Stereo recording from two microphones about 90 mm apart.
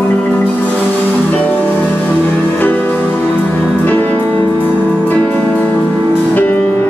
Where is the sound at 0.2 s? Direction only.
15° left (ahead or behind).